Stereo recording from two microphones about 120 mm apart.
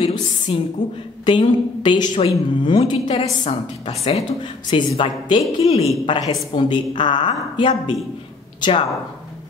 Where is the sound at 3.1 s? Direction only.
55° left (ahead or behind).